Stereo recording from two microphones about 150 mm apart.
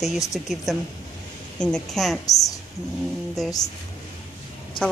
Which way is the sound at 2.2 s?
25° left (ahead or behind).